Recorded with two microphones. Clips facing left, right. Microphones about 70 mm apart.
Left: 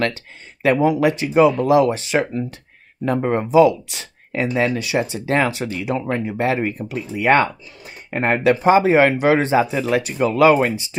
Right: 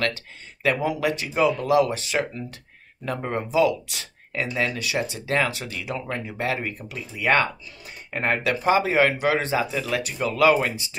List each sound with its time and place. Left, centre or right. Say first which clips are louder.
0.0 s speech: left 4 dB; left